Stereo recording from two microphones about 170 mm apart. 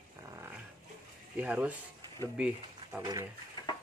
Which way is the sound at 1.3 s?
10° right (ahead or behind).